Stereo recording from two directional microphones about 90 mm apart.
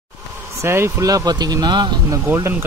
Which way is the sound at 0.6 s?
30° right (ahead or behind).